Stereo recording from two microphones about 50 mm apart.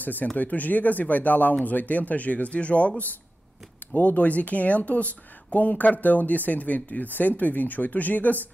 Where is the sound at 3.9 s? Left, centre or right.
Left.